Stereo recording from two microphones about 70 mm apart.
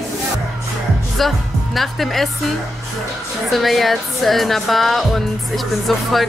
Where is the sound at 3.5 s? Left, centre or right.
Centre.